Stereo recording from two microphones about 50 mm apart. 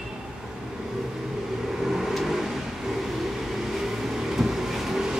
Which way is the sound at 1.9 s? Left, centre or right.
Centre.